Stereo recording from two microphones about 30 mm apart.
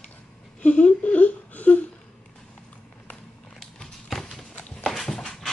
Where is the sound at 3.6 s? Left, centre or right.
Centre.